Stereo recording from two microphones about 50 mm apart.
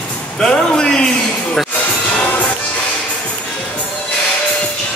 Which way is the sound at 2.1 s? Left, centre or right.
Left.